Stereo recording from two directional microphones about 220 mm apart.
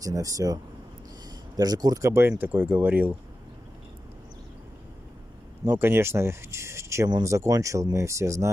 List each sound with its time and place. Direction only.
0.0 s speech: 15° right (ahead or behind)
1.6 s speech: 15° right (ahead or behind)
5.7 s speech: 10° right (ahead or behind)